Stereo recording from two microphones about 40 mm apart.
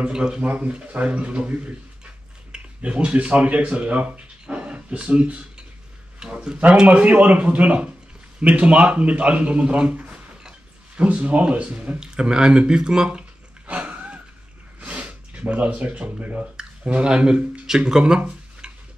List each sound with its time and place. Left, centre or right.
0.1 s a man's voice: centre
6.1 s speech: centre
6.9 s a man's voice: right
12.0 s speech: centre
13.7 s a sound: right
14.8 s snort: right
15.7 s a man's voice: right
16.5 s speech: right
18.6 s stir: right